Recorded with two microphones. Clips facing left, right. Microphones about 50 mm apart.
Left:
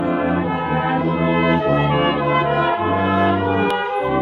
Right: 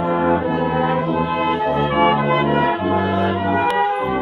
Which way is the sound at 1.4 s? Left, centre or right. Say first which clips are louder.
Left 2 dB; left.